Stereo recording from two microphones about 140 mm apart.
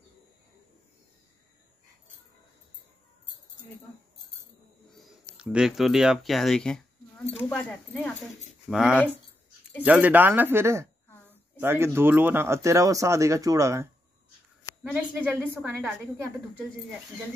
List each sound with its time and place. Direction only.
5.4 s speech: 5° right (ahead or behind)
8.6 s speech: 5° right (ahead or behind); by 13.8 s 20° right (ahead or behind)
14.8 s speech: 5° right (ahead or behind)
15.5 s speech: 15° right (ahead or behind)